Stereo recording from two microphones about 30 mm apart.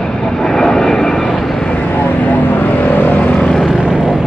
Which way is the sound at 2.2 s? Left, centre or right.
Left.